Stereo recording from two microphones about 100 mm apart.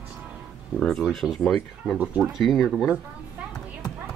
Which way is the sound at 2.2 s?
Centre (ahead or behind).